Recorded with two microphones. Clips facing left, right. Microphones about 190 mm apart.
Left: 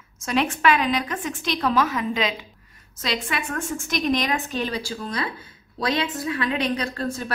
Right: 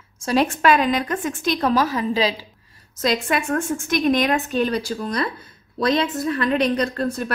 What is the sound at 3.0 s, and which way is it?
A woman's voice, 45° right (ahead or behind).